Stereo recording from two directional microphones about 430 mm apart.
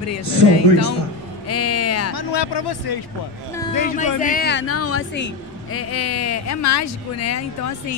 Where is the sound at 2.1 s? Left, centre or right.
Left.